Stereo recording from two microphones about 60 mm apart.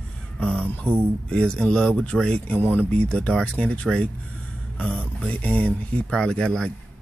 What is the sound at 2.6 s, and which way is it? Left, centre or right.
Speech, right.